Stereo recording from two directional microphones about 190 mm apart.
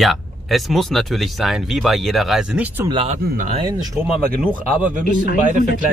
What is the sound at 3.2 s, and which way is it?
Speech, 45° right (ahead or behind).